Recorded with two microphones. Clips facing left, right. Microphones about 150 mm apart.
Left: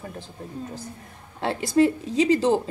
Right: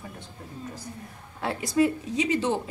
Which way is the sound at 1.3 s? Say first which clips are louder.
Left 4 dB; 25° left (ahead or behind).